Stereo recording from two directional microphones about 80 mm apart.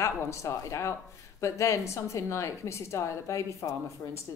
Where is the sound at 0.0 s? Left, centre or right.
Left.